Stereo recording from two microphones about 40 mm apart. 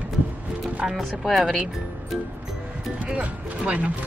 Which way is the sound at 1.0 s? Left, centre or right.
Centre.